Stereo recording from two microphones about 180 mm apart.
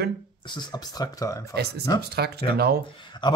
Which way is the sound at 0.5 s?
25° left (ahead or behind).